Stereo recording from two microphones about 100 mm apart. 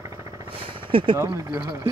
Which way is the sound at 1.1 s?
30° right (ahead or behind).